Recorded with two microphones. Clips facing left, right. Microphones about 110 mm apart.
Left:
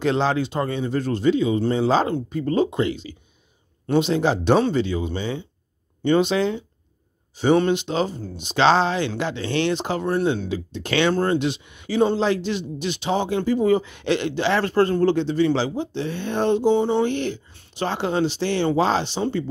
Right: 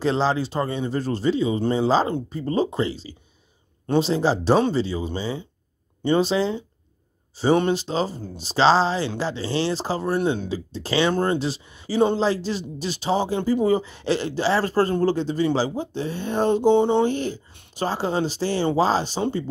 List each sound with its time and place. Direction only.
0.0 s speech: 30° right (ahead or behind)
1.6 s speech: 20° right (ahead or behind)
10.0 s speech: 5° right (ahead or behind)
10.5 s speech: 35° right (ahead or behind)
11.1 s speech: 15° right (ahead or behind)
11.3 s speech: 35° right (ahead or behind)
16.7 s speech: 20° right (ahead or behind)
17.0 s speech: 40° right (ahead or behind)